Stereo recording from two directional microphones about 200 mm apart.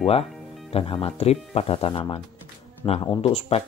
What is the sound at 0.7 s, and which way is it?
Speech, 25° left (ahead or behind).